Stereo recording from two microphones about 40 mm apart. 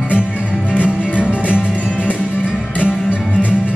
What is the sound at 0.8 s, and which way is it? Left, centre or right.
Music, right.